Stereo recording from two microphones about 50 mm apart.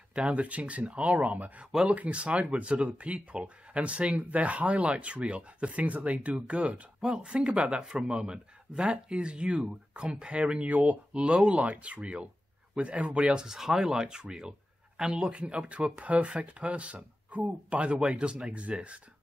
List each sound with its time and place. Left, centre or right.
0.1 s speech: right